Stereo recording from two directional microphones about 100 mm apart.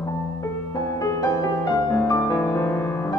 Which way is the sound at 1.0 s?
30° left (ahead or behind).